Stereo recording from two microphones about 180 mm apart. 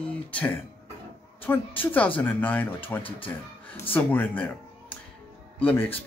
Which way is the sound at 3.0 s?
30° left (ahead or behind).